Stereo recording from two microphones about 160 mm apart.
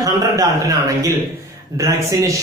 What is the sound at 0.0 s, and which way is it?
A man's voice, 20° right (ahead or behind).